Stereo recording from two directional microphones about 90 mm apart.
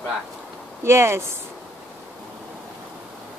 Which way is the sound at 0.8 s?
30° right (ahead or behind).